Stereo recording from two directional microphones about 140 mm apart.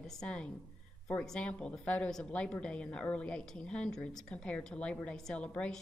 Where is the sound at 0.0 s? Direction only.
5° left (ahead or behind).